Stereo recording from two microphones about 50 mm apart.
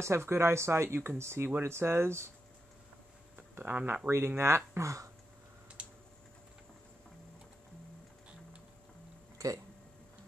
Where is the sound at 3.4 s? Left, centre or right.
Right.